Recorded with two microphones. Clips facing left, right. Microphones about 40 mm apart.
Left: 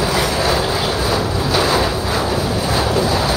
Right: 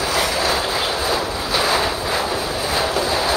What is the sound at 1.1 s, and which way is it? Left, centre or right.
Wind noise, centre.